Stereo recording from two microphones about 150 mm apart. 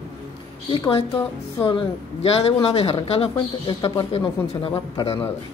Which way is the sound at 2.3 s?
40° left (ahead or behind).